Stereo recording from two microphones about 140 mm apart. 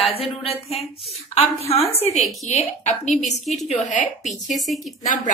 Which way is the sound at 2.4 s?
55° left (ahead or behind).